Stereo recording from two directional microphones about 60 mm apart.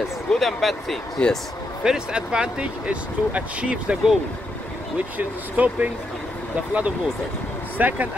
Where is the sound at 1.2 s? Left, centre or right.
Centre.